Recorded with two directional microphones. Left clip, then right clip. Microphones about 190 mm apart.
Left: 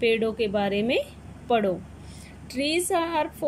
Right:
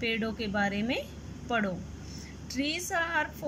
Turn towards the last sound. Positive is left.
turn(degrees=20)  # may be behind; listen again after turning